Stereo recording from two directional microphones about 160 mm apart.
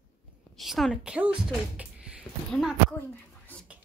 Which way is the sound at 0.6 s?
Centre (ahead or behind).